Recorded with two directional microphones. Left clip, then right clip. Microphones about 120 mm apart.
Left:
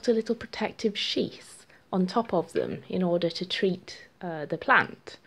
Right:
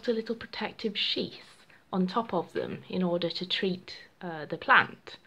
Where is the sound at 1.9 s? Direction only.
50° left (ahead or behind).